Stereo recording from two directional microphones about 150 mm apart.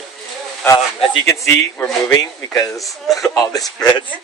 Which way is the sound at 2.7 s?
Centre (ahead or behind).